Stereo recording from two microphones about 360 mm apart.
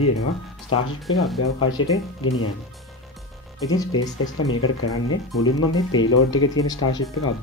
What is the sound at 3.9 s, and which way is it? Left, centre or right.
Speech, left.